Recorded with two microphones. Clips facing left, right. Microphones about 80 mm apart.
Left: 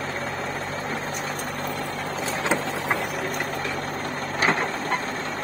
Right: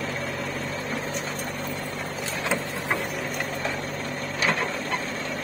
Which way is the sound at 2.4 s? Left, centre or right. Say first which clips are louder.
Left 2 dB; left.